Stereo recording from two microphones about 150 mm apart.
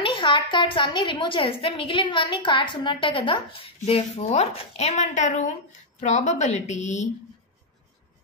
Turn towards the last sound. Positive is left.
turn(degrees=50)  # may be behind; listen again after turning